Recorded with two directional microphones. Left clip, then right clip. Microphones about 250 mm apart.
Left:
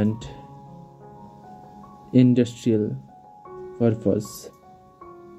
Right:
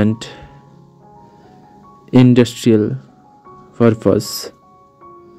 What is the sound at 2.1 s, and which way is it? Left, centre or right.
Speech, right.